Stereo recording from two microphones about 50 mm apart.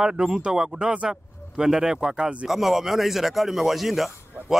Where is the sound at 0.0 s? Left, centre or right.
Centre.